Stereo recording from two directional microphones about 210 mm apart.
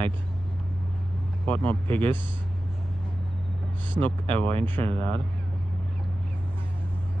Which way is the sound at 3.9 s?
10° left (ahead or behind).